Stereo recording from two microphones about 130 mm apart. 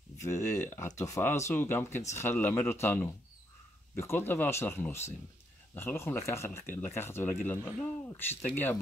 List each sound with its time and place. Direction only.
0.2 s speech: 20° left (ahead or behind)